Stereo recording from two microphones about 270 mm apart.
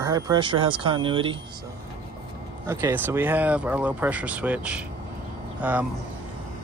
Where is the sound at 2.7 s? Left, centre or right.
Centre.